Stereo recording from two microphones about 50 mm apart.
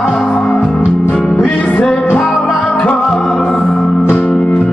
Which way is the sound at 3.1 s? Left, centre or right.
Centre.